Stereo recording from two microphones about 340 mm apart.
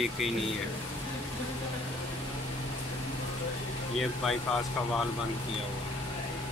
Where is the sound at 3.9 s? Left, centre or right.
Centre.